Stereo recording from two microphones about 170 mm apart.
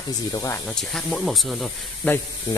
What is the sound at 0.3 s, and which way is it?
Speech, 20° left (ahead or behind).